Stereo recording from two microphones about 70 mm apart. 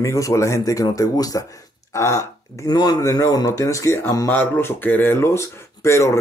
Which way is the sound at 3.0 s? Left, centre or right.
Left.